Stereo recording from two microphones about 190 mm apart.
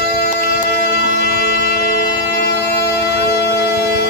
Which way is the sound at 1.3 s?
55° left (ahead or behind).